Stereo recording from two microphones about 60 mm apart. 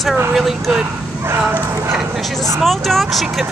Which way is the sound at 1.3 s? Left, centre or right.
Right.